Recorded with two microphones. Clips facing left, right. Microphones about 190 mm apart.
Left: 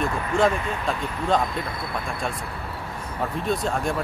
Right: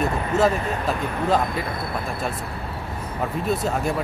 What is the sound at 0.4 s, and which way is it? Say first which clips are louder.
Speech: right 1 dB; 5° right (ahead or behind).